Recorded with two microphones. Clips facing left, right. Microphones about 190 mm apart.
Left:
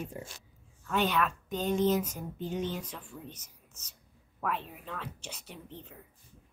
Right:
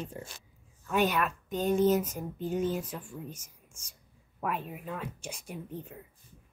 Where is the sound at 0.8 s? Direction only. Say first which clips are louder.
Right 1 dB; 10° right (ahead or behind).